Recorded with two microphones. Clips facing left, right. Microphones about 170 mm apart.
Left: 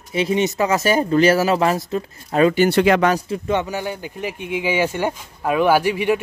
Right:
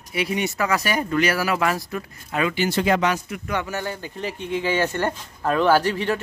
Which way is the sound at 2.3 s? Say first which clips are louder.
Left 8 dB; 40° left (ahead or behind).